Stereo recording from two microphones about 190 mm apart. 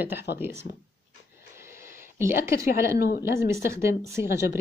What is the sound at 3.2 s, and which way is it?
Speech, 15° right (ahead or behind).